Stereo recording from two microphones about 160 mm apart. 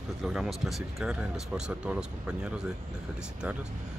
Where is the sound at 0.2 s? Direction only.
Centre (ahead or behind).